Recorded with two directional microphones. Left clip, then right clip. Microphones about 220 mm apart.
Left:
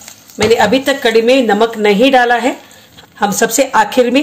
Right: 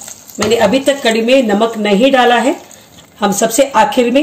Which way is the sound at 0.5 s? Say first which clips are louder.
Right 1 dB; 40° left (ahead or behind).